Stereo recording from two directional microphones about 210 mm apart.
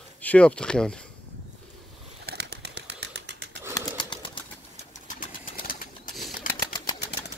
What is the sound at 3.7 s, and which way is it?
Pigeon, 20° left (ahead or behind).